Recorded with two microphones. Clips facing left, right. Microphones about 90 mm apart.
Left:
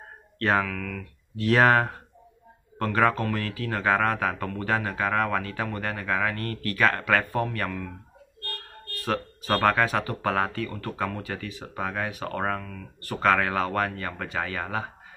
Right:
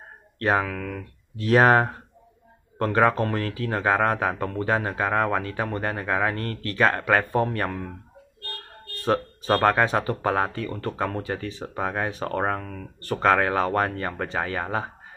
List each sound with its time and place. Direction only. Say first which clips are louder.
0.4 s speech: right 1 dB; 20° right (ahead or behind)
0.7 s speech: right 2 dB; 30° right (ahead or behind)
8.9 s speech: right 5 dB; 25° right (ahead or behind)